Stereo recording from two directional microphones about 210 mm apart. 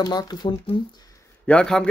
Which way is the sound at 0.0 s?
20° left (ahead or behind).